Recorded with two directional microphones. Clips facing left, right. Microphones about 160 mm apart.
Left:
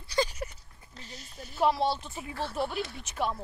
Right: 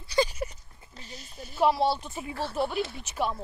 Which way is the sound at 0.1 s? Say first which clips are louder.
Right 3 dB; 10° right (ahead or behind).